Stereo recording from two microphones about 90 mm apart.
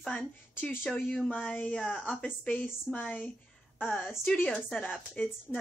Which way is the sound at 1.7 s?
Centre (ahead or behind).